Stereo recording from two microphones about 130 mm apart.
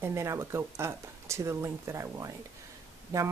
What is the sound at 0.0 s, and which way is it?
Speech, 20° right (ahead or behind).